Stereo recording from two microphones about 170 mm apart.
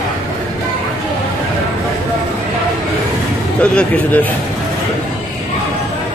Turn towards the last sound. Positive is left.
turn(degrees=10)  # may be behind; listen again after turning